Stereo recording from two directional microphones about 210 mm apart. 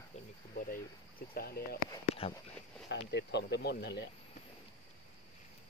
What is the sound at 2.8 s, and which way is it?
Speech, 55° left (ahead or behind).